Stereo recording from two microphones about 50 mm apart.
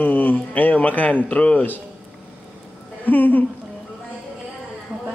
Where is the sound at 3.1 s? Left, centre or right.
Left.